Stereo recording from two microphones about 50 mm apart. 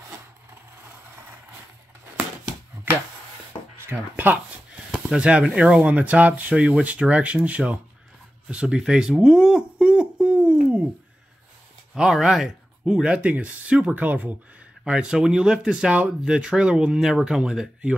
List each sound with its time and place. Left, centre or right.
3.9 s speech: right
5.8 s speech: right
8.6 s speech: centre
9.1 s a sound: centre
11.9 s speech: centre
13.0 s speech: right
13.9 s speech: right
14.9 s speech: centre